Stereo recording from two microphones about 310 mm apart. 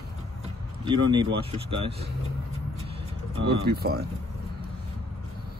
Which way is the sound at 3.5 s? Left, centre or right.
Right.